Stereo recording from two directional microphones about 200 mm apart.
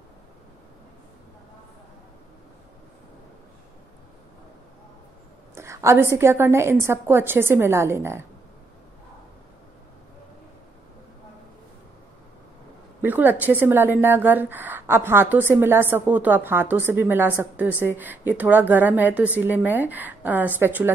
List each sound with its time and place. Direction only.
5.5 s a woman's voice: 15° right (ahead or behind)
13.0 s a woman's voice: 10° right (ahead or behind)